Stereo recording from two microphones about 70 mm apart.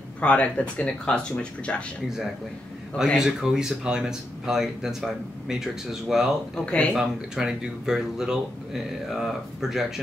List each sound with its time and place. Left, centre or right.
0.2 s speech: centre
3.2 s speech: centre
6.5 s speech: centre
6.9 s speech: centre